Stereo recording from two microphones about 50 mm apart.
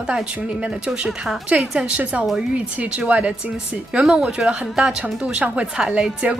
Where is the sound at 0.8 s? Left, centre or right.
Centre.